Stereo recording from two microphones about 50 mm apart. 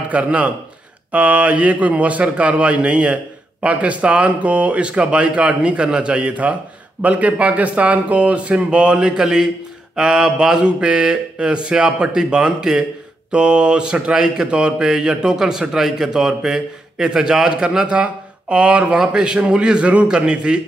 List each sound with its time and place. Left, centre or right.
0.1 s a man's voice: right